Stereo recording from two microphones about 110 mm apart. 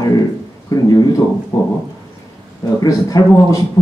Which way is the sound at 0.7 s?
30° left (ahead or behind).